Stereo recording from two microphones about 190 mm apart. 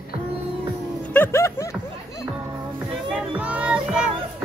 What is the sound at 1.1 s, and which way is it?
Music, 15° left (ahead or behind).